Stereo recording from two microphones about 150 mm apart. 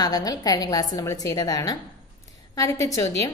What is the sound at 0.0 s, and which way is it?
A woman's voice, 25° left (ahead or behind).